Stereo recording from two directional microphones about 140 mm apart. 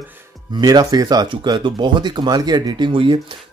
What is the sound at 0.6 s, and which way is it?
Speech, 30° right (ahead or behind).